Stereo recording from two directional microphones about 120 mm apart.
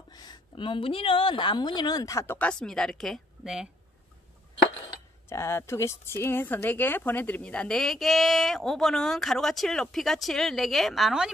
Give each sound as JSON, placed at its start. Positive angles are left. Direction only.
{"t": 0.1, "sound": "speech", "side_deg": 35}
{"t": 2.3, "sound": "speech", "side_deg": 10}
{"t": 5.3, "sound": "speech", "side_deg": 20}